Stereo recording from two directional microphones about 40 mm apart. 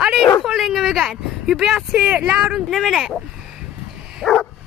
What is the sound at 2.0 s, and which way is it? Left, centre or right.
Speech, right.